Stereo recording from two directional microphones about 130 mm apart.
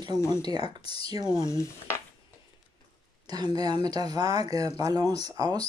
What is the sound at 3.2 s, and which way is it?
Speech, 30° right (ahead or behind).